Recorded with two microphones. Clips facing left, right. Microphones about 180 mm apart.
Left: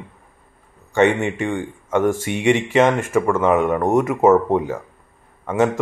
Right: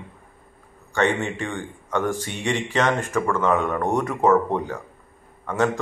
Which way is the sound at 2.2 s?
10° left (ahead or behind).